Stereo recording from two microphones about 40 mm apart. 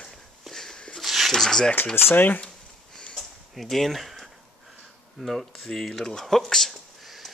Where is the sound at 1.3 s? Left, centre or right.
Centre.